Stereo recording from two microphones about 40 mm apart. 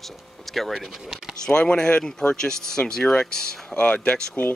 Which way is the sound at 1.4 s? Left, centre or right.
Left.